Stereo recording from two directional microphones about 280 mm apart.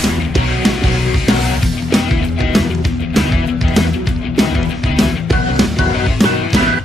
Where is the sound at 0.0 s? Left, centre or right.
Centre.